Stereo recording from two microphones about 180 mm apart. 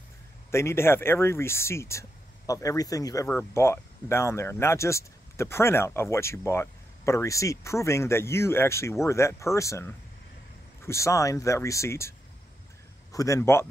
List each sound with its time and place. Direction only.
0.5 s speech: 15° left (ahead or behind)
13.1 s speech: 20° left (ahead or behind)